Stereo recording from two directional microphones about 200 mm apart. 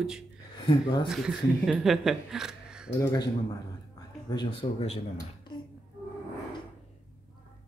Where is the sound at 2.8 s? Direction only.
15° left (ahead or behind).